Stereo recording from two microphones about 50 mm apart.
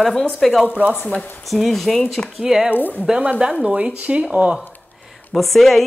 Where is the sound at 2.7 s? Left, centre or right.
Left.